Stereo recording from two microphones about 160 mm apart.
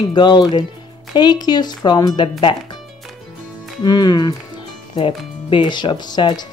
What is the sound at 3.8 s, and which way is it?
Speech, 25° left (ahead or behind).